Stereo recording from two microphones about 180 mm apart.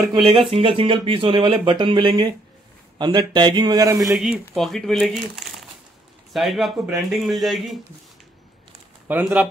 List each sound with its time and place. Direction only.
0.3 s speech: 30° right (ahead or behind)
4.1 s speech: centre (ahead or behind)
9.0 s speech: 10° right (ahead or behind)